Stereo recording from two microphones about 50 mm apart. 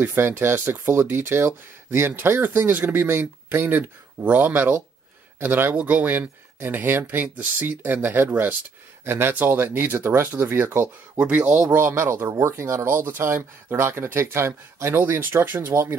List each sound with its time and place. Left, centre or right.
0.0 s speech: right
9.0 s speech: right
9.3 s speech: right
11.1 s speech: right
11.5 s speech: right
15.7 s speech: right